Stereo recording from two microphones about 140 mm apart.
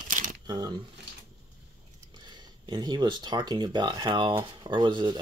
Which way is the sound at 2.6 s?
30° right (ahead or behind).